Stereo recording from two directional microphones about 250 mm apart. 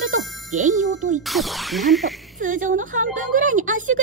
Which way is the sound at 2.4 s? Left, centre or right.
Right.